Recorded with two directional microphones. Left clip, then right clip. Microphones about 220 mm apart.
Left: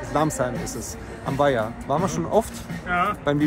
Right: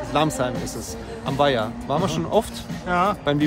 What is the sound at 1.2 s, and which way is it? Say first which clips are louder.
Speech: right 1 dB; 10° right (ahead or behind).